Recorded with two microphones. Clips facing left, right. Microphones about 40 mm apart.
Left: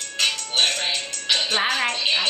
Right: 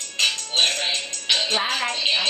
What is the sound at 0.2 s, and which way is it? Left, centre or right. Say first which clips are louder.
Music: even; centre.